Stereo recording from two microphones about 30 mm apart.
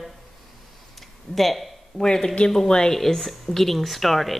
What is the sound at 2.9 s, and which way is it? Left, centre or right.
Speech, centre.